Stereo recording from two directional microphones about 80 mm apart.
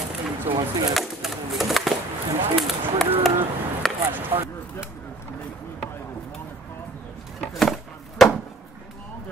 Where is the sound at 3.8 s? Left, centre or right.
Centre.